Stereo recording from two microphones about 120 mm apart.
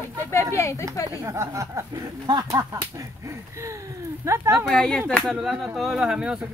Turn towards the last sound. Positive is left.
turn(degrees=-5)  # may be behind; listen again after turning